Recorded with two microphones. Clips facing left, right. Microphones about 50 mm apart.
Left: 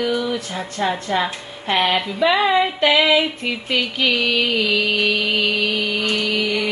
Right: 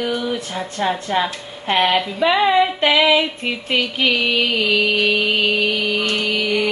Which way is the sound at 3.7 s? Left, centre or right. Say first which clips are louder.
Right 1 dB; right.